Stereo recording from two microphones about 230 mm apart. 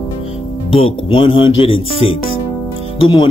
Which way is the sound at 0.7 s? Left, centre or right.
Left.